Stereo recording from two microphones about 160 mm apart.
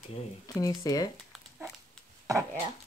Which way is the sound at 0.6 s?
20° left (ahead or behind).